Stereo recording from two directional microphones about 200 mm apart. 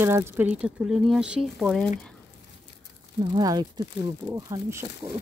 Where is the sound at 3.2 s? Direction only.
20° right (ahead or behind).